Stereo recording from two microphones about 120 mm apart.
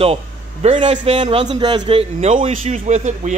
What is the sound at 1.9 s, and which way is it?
Speech, 60° right (ahead or behind).